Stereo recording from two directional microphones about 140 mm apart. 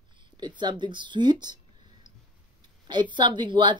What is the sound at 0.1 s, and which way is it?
Speech, 35° right (ahead or behind).